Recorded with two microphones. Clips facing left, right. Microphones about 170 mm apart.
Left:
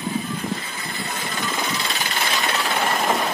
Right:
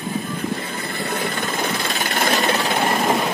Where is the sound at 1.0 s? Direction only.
60° right (ahead or behind).